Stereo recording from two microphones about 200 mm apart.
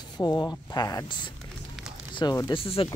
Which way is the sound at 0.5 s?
20° left (ahead or behind).